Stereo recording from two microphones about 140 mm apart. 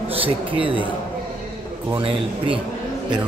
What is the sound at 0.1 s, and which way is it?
Speech, 40° right (ahead or behind).